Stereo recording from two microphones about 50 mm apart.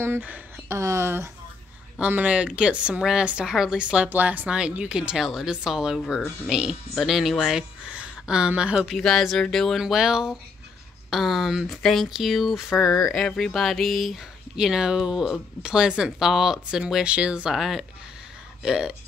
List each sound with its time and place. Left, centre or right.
0.7 s speech: right
2.0 s speech: right
3.0 s speech: centre
4.1 s a woman's voice: right
4.5 s speech: centre
5.1 s speech: centre
7.0 s speech: centre
7.9 s speech: centre
8.9 s speech: centre
9.8 s speech: centre
11.8 s speech: centre
12.9 s speech: centre
17.0 s speech: right
17.5 s speech: centre